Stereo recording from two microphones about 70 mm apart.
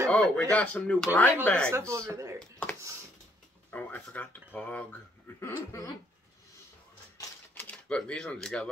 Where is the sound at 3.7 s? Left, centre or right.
Left.